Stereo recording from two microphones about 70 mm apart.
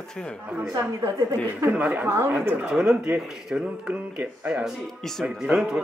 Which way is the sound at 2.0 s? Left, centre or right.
Right.